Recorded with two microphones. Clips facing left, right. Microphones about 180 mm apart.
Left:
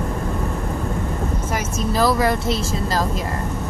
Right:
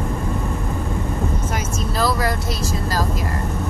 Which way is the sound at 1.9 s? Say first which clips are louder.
Left 3 dB; 20° left (ahead or behind).